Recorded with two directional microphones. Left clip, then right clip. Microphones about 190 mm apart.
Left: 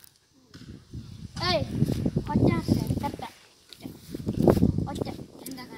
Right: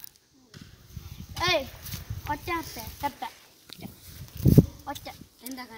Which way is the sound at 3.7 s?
30° right (ahead or behind).